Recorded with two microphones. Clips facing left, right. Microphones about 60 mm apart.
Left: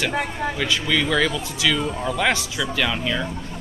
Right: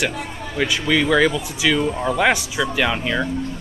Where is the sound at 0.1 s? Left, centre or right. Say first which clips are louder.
Left 5 dB; left.